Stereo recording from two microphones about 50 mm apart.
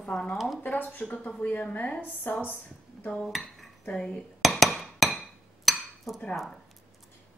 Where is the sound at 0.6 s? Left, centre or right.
Left.